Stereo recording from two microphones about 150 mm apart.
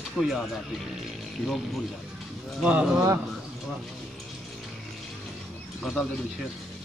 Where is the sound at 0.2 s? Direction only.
Centre (ahead or behind).